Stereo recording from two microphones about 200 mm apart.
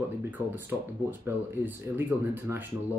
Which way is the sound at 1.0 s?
10° right (ahead or behind).